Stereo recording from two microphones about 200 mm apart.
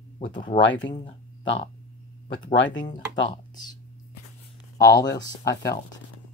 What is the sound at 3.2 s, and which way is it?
Speech, 25° left (ahead or behind).